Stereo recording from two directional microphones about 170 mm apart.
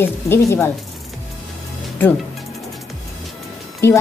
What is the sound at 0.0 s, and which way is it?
Speech, 15° left (ahead or behind).